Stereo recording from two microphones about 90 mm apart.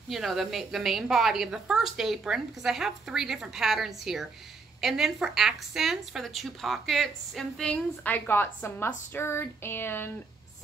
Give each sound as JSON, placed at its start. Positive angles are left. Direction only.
{"t": 0.1, "sound": "a woman's voice", "side_deg": 0}
{"t": 7.7, "sound": "a woman's voice", "side_deg": 20}